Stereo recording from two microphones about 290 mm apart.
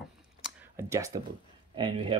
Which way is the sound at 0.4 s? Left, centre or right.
Centre.